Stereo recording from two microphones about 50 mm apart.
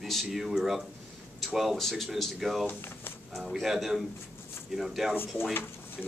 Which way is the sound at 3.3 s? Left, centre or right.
Centre.